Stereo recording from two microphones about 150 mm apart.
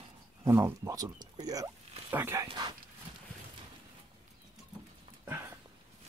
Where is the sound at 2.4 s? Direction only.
30° right (ahead or behind).